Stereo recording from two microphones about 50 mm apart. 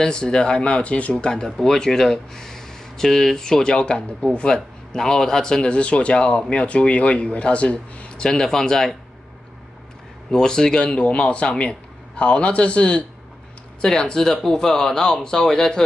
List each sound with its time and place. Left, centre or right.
0.0 s a man's voice: centre
8.2 s speech: centre
10.3 s a man's voice: centre